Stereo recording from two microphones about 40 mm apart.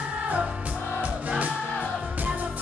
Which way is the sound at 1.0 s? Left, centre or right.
Right.